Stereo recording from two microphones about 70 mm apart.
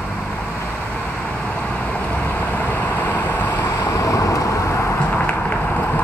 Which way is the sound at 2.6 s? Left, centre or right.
Left.